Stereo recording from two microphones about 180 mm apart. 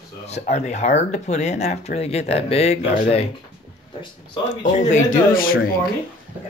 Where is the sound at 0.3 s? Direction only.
40° left (ahead or behind).